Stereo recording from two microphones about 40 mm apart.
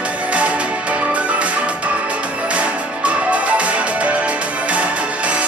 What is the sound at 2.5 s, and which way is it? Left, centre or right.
Music, right.